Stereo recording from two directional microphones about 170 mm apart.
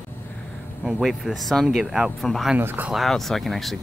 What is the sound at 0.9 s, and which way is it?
Speech, centre (ahead or behind).